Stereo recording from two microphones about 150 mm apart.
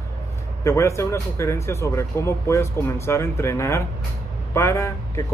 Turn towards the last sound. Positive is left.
turn(degrees=20)  # may be behind; listen again after turning